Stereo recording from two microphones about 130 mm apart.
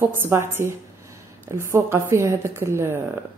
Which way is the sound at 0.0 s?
15° right (ahead or behind).